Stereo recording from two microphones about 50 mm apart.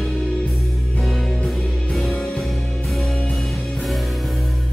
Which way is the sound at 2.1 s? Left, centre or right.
Centre.